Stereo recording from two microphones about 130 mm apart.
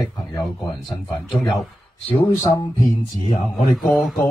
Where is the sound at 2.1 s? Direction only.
35° left (ahead or behind).